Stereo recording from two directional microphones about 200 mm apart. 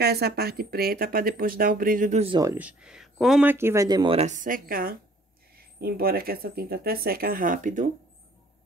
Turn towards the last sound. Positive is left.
turn(degrees=-40)  # may be behind; listen again after turning